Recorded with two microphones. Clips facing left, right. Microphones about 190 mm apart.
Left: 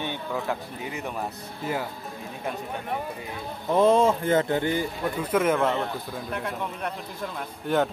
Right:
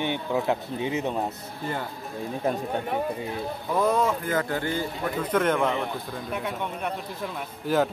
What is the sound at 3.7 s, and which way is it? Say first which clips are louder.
Speech: left 4 dB; 25° left (ahead or behind).